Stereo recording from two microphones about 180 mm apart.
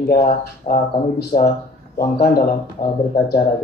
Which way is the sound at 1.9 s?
55° left (ahead or behind).